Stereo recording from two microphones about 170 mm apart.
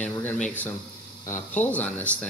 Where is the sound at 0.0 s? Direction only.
10° left (ahead or behind).